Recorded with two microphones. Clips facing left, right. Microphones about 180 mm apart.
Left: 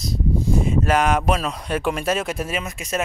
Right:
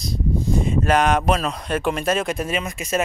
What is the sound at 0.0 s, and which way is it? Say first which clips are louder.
Speech: left 1 dB; 5° left (ahead or behind).